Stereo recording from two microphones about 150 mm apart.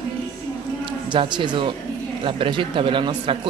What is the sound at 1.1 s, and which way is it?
A man's voice, 30° right (ahead or behind).